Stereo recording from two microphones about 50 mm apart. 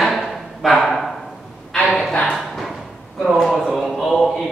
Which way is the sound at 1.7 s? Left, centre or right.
Centre.